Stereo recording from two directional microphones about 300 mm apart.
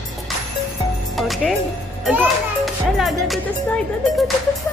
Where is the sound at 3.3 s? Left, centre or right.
Centre.